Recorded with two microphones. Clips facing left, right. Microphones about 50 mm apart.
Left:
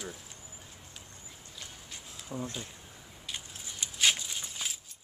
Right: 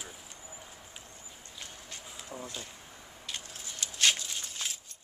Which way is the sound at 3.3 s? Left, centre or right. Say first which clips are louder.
Even; centre.